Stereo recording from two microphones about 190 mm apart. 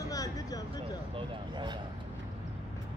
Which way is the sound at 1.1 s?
25° right (ahead or behind).